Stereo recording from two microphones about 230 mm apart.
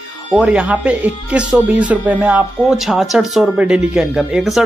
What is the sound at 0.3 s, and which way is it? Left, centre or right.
Speech, centre.